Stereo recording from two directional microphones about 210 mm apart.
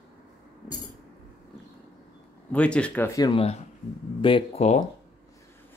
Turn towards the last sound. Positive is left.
turn(degrees=30)  # may be behind; listen again after turning